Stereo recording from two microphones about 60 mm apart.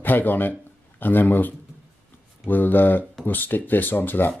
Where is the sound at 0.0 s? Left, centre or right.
Left.